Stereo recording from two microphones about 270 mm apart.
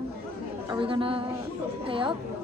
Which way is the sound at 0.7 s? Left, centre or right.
Centre.